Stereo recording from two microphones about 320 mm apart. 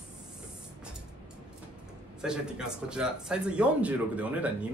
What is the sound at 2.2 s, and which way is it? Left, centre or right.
Speech, centre.